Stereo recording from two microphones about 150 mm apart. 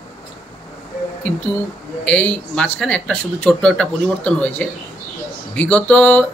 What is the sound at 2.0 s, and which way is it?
Speech, 10° left (ahead or behind).